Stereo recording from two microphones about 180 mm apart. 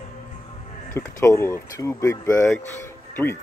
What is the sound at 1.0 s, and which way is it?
Speech, 15° left (ahead or behind).